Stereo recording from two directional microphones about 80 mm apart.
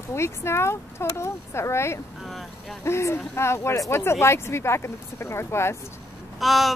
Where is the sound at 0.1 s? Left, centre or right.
Left.